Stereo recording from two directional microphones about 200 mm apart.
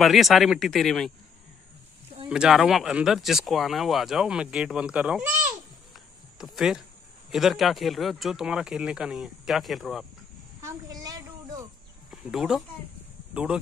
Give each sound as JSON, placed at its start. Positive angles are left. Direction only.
{"t": 0.0, "sound": "speech", "side_deg": 0}
{"t": 2.2, "sound": "speech", "side_deg": -5}
{"t": 6.3, "sound": "speech", "side_deg": 0}
{"t": 10.6, "sound": "a sound", "side_deg": -20}
{"t": 12.1, "sound": "speech", "side_deg": 0}